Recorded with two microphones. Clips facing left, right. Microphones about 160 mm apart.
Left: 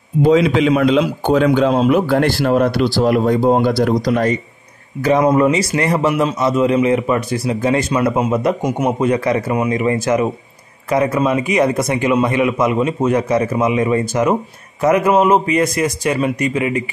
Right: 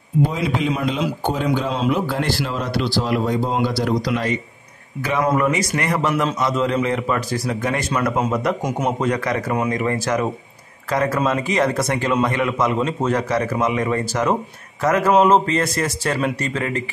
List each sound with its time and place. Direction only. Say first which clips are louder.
0.3 s a man's voice: left 10 dB; 80° left; by 4.4 s 45° left (ahead or behind)
5.2 s a man's voice: left 2 dB; 20° left (ahead or behind)
6.0 s a man's voice: left 4 dB; 15° left (ahead or behind)
8.6 s a man's voice: left 4 dB; 10° left (ahead or behind)
9.0 s a man's voice: left 7 dB; 25° left (ahead or behind)
9.5 s a man's voice: left 4 dB; 10° left (ahead or behind)
9.8 s a man's voice: left 5 dB; 20° left (ahead or behind)